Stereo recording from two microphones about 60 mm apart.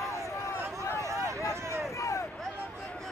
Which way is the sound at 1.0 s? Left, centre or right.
Right.